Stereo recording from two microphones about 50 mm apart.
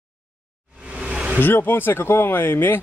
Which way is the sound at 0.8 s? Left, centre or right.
Right.